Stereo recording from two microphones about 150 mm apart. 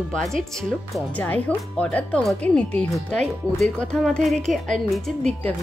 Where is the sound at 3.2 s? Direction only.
45° right (ahead or behind).